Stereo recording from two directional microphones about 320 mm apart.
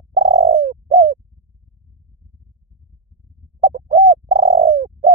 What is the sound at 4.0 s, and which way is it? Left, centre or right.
Bird, centre.